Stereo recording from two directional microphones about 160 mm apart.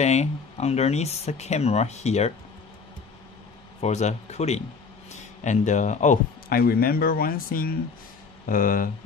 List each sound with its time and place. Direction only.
0.0 s speech: 45° left (ahead or behind)
3.8 s speech: 45° left (ahead or behind)
6.5 s speech: 70° left (ahead or behind)